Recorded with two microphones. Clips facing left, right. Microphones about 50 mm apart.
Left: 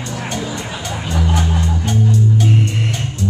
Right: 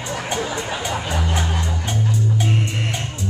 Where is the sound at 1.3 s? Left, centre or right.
Centre.